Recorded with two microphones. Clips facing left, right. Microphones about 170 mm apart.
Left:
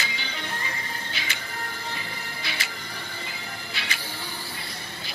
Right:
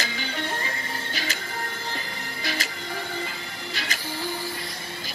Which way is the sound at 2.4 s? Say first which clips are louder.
Right 6 dB; 40° right (ahead or behind).